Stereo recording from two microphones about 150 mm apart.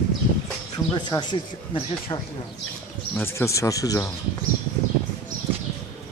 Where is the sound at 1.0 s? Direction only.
30° left (ahead or behind).